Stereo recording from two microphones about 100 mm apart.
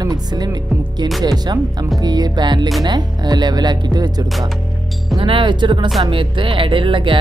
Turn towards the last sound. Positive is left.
turn(degrees=-55)  # may be behind; listen again after turning